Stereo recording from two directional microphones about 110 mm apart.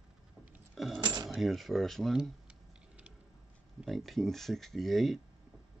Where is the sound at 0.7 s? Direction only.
Centre (ahead or behind).